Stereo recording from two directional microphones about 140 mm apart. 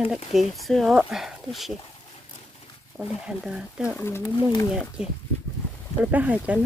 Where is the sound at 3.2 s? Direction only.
5° right (ahead or behind).